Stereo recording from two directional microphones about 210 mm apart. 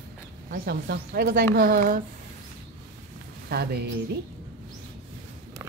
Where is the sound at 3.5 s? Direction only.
50° right (ahead or behind).